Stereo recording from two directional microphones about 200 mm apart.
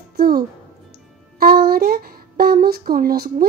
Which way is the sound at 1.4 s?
50° right (ahead or behind).